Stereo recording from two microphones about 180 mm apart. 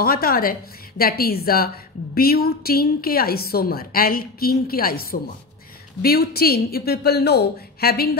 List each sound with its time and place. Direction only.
0.0 s a woman's voice: 55° left (ahead or behind)